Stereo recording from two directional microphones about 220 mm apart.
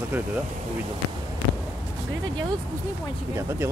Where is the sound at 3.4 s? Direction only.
10° right (ahead or behind).